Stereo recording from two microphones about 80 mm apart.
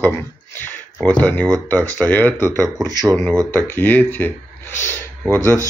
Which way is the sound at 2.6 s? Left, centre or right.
Right.